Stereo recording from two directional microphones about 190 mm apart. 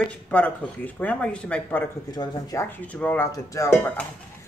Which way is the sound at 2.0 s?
20° left (ahead or behind).